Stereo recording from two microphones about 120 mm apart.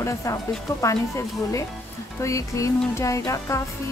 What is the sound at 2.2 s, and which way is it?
Speech, 25° left (ahead or behind).